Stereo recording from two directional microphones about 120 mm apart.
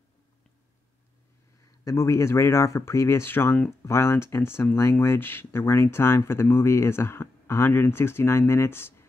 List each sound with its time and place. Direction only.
1.9 s speech: 25° left (ahead or behind)